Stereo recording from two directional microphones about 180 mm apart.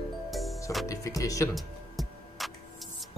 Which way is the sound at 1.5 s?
Centre (ahead or behind).